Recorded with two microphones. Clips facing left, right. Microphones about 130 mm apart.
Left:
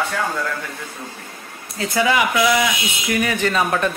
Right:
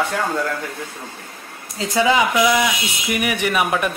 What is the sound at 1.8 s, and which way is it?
A man's voice, 20° right (ahead or behind).